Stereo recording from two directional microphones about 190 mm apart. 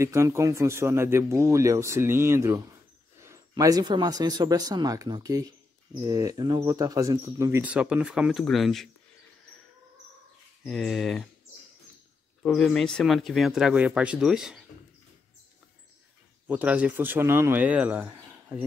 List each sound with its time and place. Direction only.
0.0 s speech: 15° right (ahead or behind)
10.6 s speech: centre (ahead or behind)
12.4 s speech: centre (ahead or behind)
16.4 s speech: 10° right (ahead or behind)